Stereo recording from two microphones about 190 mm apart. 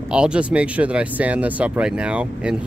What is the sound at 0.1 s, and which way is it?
Speech, 5° right (ahead or behind).